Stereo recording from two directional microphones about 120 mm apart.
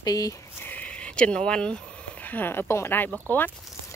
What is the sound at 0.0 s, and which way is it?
Speech, 30° left (ahead or behind).